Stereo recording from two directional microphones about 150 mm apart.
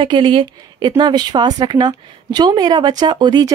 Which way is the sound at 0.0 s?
30° right (ahead or behind).